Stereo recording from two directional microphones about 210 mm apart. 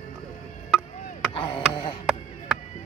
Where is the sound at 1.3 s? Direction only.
25° left (ahead or behind).